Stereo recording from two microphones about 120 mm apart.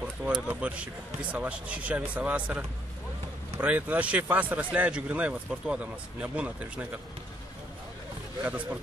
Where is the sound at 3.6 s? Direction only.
10° right (ahead or behind).